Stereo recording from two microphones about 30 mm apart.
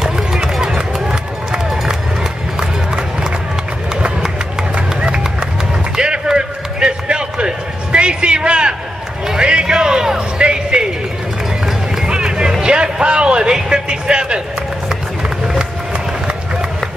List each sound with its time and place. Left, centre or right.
0.9 s run: centre
4.7 s run: right
5.9 s basketball bounce: right
6.2 s a sound: right
10.4 s music: right
12.0 s music: right
12.6 s a sound: right
14.9 s run: right